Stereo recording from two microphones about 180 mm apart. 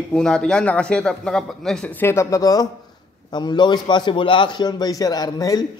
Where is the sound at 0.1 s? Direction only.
5° left (ahead or behind); by 5.7 s 20° left (ahead or behind).